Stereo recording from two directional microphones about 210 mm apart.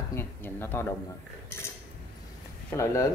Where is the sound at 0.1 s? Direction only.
10° left (ahead or behind).